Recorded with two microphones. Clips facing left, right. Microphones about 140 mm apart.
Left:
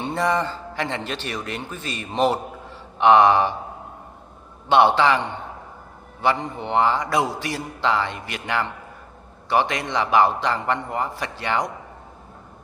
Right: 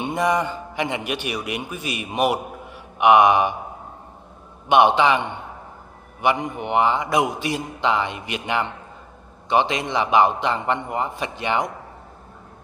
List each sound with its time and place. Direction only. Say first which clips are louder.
0.0 s a man's voice: right 1 dB; 15° right (ahead or behind)
4.6 s a man's voice: right 1 dB; 15° right (ahead or behind)